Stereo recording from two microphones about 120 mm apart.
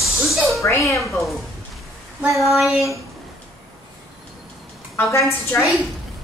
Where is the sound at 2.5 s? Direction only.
Centre (ahead or behind).